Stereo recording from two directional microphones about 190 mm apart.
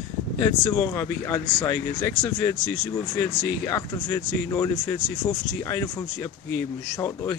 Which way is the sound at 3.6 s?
15° left (ahead or behind).